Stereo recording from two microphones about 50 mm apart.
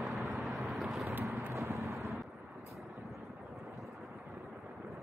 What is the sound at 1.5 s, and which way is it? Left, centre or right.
Vehicle, right.